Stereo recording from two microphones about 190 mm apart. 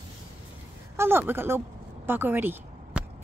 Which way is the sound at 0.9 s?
10° right (ahead or behind).